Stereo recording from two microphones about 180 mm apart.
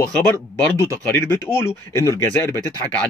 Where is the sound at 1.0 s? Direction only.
15° left (ahead or behind).